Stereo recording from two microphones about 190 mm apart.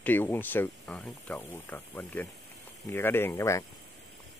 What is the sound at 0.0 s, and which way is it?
Speech, 10° left (ahead or behind).